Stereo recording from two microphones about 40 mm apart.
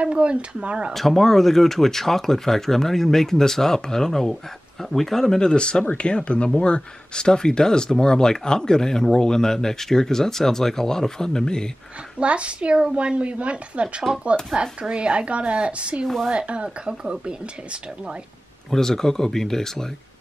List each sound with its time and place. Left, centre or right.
0.0 s a woman's voice: right
0.9 s speech: centre
5.5 s speech: left
12.2 s a woman's voice: right
18.7 s speech: centre